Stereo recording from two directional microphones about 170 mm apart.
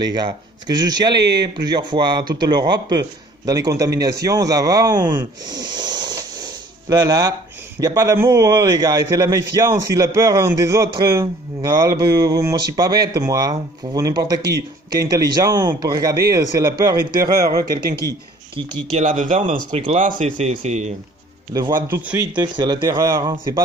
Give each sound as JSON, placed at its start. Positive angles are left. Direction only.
{"t": 0.0, "sound": "a man's voice", "side_deg": -25}
{"t": 18.9, "sound": "speech", "side_deg": -35}
{"t": 21.5, "sound": "a man's voice", "side_deg": -25}
{"t": 21.9, "sound": "speech", "side_deg": -10}
{"t": 22.4, "sound": "a man's voice", "side_deg": -25}